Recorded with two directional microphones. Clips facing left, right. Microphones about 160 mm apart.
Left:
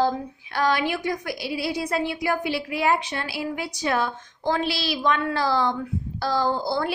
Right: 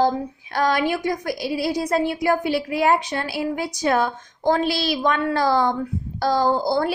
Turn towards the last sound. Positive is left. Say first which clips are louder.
# right 4 dB
turn(degrees=-40)  # may be behind; listen again after turning